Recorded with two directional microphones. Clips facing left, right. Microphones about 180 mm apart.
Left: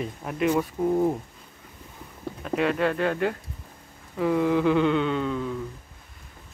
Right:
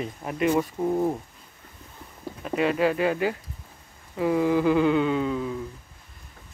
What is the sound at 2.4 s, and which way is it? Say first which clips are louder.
Speech: right 1 dB; 5° right (ahead or behind).